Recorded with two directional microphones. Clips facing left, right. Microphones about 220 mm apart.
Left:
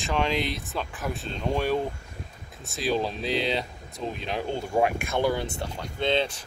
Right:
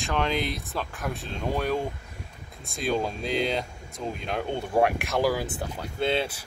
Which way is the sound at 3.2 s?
45° right (ahead or behind).